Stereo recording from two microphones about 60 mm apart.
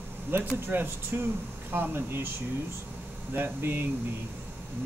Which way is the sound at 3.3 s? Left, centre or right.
Right.